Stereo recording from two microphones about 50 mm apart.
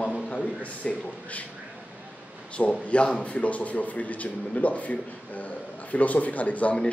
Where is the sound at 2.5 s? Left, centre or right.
Left.